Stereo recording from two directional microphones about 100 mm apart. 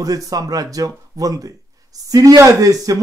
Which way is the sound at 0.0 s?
35° right (ahead or behind).